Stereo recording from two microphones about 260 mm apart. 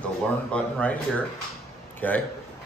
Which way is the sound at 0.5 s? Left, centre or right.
Centre.